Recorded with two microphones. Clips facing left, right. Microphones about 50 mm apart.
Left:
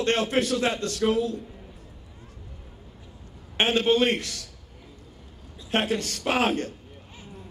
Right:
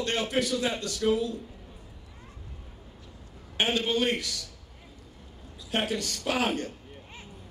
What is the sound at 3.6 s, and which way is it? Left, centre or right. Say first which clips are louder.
Speech: left 5 dB; left.